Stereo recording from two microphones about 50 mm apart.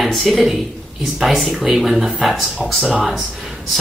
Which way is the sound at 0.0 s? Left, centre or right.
Centre.